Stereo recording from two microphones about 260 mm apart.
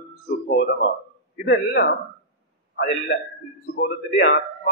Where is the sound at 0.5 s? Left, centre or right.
Left.